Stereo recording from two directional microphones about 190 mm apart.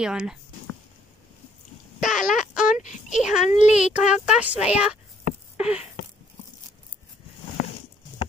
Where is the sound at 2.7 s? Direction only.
40° left (ahead or behind).